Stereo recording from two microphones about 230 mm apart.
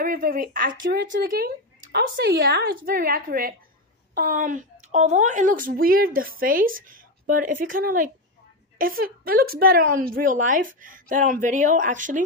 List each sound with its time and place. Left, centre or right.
0.0 s speech: right